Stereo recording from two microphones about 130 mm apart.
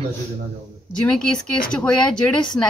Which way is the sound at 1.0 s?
5° left (ahead or behind).